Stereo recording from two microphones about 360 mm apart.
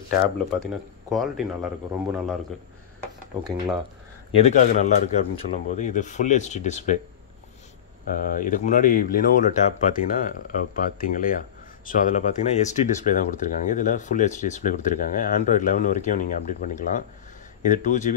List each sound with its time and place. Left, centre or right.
1.0 s speech: centre
3.4 s speech: centre
4.4 s speech: centre
8.1 s speech: left